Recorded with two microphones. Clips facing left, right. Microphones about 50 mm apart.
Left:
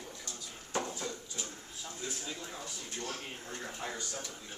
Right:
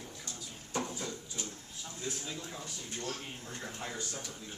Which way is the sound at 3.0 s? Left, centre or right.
Left.